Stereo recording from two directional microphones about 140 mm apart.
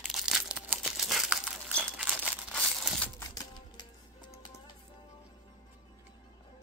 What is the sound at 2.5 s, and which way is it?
Crushing, centre (ahead or behind).